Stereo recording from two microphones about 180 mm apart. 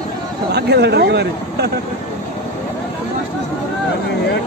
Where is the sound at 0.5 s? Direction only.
65° right (ahead or behind).